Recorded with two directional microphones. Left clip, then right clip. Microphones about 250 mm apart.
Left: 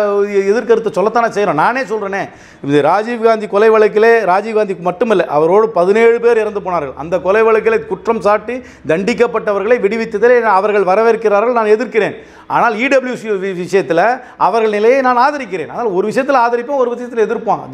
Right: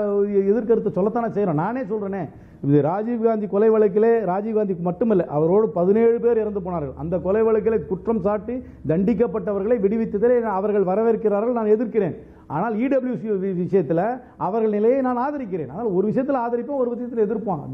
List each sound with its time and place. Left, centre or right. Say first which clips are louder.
0.0 s a man's voice: left 7 dB; centre